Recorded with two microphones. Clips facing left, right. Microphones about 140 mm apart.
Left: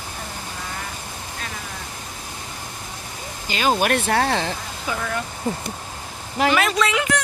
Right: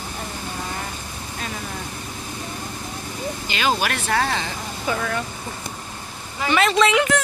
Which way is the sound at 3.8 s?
50° left (ahead or behind).